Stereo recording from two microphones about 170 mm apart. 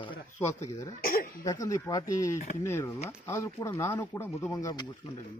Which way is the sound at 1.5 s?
20° left (ahead or behind).